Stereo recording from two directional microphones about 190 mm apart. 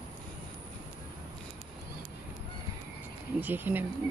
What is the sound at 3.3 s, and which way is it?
Speech, 10° right (ahead or behind).